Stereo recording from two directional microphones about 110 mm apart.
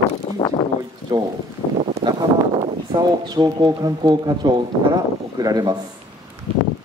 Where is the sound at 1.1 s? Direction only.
40° right (ahead or behind).